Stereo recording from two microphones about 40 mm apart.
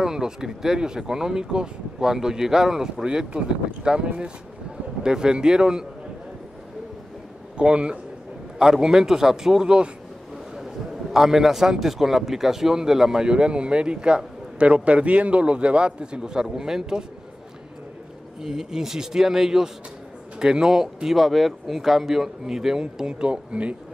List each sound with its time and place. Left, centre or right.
0.0 s a man's voice: centre
7.5 s speech: right
8.5 s a man's voice: centre
10.5 s a man's voice: centre
18.4 s a man's voice: centre; by 23.8 s right